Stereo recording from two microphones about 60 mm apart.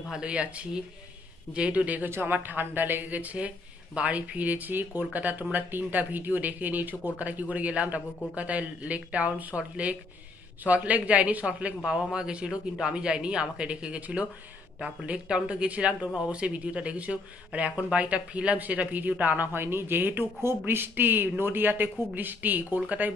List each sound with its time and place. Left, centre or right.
0.1 s speech: centre
2.0 s a woman's voice: right
10.6 s a woman's voice: right